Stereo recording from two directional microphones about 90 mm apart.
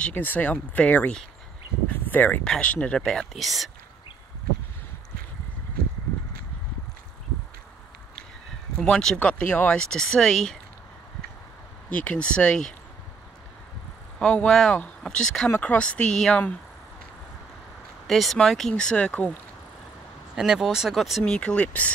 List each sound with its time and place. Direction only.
0.0 s speech: 20° left (ahead or behind); by 3.7 s centre (ahead or behind)
8.7 s speech: 10° left (ahead or behind)
9.8 s speech: 5° left (ahead or behind)
11.9 s speech: 15° left (ahead or behind)
14.2 s speech: 15° left (ahead or behind)
18.0 s speech: centre (ahead or behind)
20.3 s speech: 5° right (ahead or behind)
21.2 s speech: 10° left (ahead or behind)